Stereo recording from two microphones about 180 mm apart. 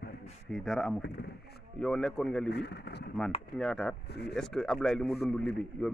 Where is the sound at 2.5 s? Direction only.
65° left (ahead or behind).